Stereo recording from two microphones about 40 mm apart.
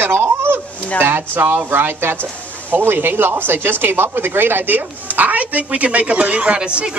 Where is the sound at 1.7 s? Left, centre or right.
Right.